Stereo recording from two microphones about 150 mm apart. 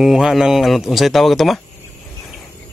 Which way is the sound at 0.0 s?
Centre (ahead or behind).